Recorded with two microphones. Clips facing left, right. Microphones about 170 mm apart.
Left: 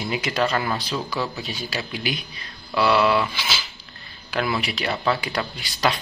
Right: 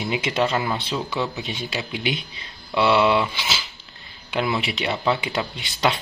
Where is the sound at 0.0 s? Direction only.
20° right (ahead or behind).